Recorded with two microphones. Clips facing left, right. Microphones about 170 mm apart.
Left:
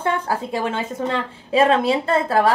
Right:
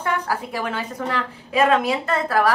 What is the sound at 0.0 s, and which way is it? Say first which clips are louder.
A woman's voice: left 2 dB; 25° left (ahead or behind).